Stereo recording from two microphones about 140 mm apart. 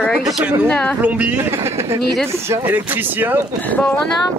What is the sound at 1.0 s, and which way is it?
Speech, 10° right (ahead or behind).